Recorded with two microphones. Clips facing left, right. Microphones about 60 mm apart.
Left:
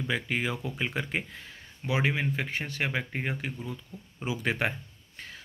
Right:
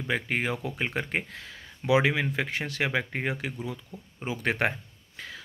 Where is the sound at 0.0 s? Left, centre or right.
Right.